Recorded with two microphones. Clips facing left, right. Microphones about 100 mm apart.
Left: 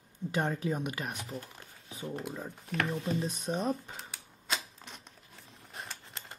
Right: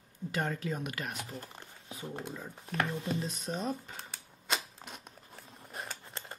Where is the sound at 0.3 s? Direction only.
20° left (ahead or behind).